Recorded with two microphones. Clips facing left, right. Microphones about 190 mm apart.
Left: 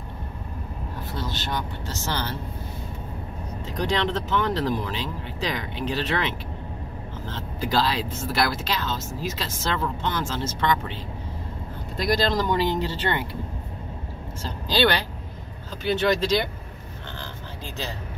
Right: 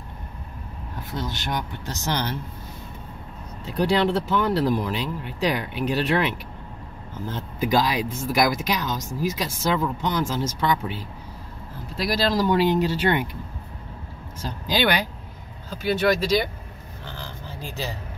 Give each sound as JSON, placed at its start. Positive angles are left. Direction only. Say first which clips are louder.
{"t": 1.1, "sound": "speech", "louder": "right 2 dB", "side_deg": -15}
{"t": 3.7, "sound": "speech", "louder": "right 4 dB", "side_deg": -10}
{"t": 12.0, "sound": "speech", "louder": "right 1 dB", "side_deg": -5}
{"t": 14.7, "sound": "speech", "louder": "left 1 dB", "side_deg": -15}